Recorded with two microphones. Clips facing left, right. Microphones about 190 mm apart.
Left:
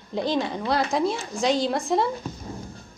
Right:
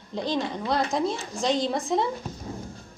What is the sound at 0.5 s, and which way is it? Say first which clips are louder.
Speech: left 2 dB; 5° left (ahead or behind).